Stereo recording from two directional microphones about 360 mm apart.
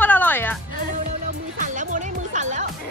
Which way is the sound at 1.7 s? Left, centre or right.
Right.